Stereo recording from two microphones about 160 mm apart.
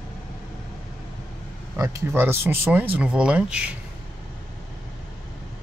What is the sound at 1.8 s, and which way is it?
Speech, 15° right (ahead or behind).